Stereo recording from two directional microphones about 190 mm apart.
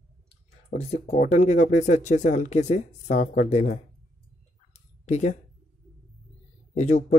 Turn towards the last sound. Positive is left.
turn(degrees=40)  # may be behind; listen again after turning